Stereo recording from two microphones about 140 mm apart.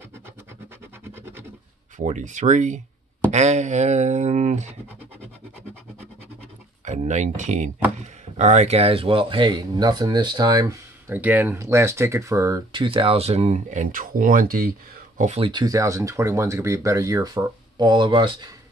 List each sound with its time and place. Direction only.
2.0 s speech: 60° right (ahead or behind)
6.8 s speech: 60° right (ahead or behind); by 10.8 s 25° right (ahead or behind)
11.1 s speech: 15° right (ahead or behind)
12.7 s speech: 40° right (ahead or behind); by 14.7 s 90° right
15.1 s speech: 60° right (ahead or behind)
15.4 s speech: 30° right (ahead or behind)